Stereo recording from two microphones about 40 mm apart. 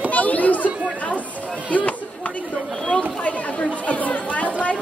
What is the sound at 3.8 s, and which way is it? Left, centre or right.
Chatter, left.